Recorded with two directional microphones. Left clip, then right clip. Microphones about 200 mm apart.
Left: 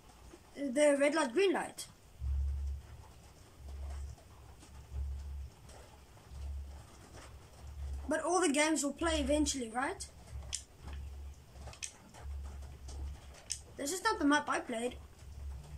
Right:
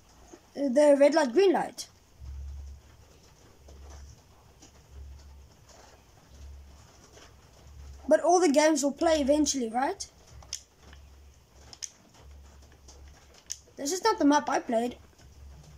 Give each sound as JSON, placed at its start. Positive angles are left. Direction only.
{"t": 0.6, "sound": "a woman's voice", "side_deg": -25}
{"t": 8.1, "sound": "a woman's voice", "side_deg": -25}
{"t": 13.5, "sound": "speech", "side_deg": -25}